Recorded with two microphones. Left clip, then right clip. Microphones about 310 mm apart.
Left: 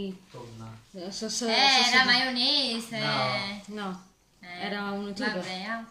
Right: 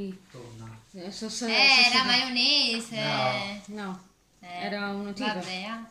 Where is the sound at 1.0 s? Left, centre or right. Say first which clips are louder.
Left 2 dB; left.